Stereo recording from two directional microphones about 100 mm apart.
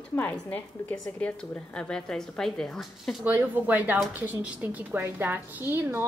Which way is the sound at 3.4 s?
20° right (ahead or behind).